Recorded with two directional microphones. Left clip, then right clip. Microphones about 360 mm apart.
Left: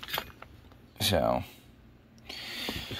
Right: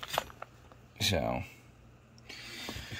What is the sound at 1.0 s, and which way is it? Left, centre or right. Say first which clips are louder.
Speech: left 5 dB; centre.